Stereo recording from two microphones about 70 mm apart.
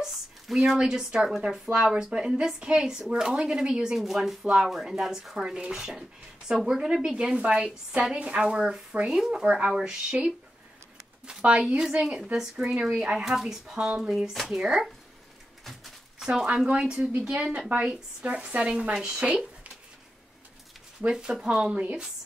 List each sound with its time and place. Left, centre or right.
0.0 s speech: centre
15.6 s a sound: centre
16.8 s speech: centre
21.0 s speech: centre